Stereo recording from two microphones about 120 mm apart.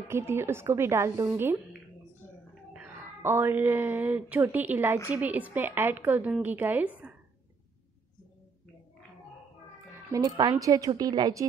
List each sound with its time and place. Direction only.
0.1 s a woman's voice: 20° right (ahead or behind)
2.7 s a woman's voice: 15° right (ahead or behind)
10.1 s a woman's voice: 35° right (ahead or behind)